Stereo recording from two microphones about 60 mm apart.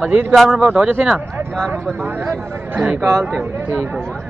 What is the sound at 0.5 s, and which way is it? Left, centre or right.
Speech, centre.